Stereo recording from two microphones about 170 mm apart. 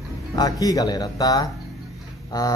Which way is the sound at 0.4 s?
20° left (ahead or behind).